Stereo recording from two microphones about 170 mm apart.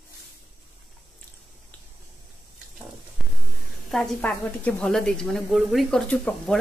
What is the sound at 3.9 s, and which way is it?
A woman's voice, 5° left (ahead or behind).